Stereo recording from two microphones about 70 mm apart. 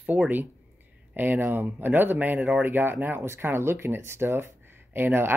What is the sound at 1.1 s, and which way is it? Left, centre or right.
Speech, right.